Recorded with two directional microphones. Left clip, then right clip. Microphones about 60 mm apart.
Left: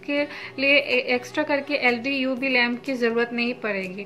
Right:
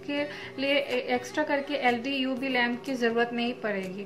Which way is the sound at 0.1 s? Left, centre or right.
Right.